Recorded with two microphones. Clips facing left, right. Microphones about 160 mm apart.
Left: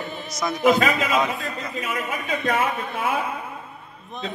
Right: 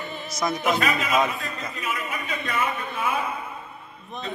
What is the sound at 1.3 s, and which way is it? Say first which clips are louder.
A man's voice: left 4 dB; 85° left.